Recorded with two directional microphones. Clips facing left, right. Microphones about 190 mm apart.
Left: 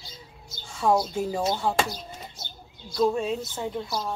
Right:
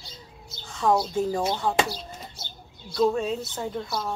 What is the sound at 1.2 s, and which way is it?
Speech, 10° left (ahead or behind).